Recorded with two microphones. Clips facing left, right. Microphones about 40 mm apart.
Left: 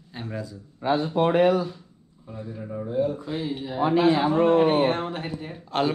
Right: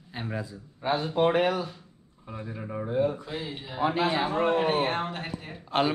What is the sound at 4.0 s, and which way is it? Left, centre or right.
Speech, right.